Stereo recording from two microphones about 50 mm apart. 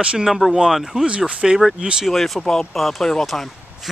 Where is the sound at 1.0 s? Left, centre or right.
Right.